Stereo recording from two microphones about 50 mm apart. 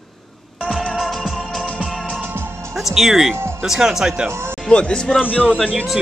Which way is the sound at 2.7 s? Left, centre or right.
Centre.